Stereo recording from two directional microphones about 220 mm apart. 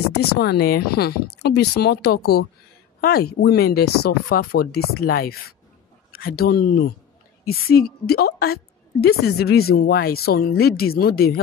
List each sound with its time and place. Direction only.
0.1 s speech: 45° left (ahead or behind)